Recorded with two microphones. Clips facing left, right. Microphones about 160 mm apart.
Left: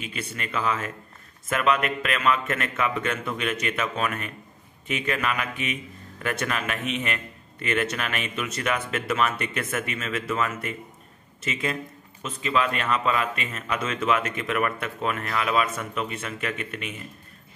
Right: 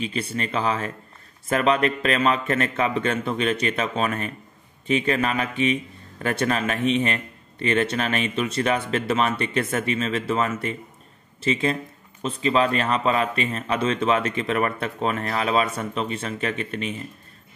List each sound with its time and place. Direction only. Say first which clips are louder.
0.0 s a man's voice: right 7 dB; 30° right (ahead or behind)